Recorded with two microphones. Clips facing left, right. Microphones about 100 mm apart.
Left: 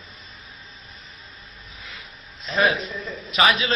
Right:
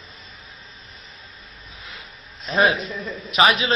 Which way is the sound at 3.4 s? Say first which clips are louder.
Right 2 dB; 25° right (ahead or behind).